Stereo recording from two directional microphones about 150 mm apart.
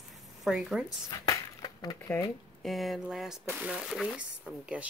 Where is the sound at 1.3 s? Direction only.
25° left (ahead or behind).